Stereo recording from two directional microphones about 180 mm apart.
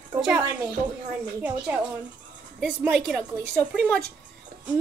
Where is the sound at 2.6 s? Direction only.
5° right (ahead or behind).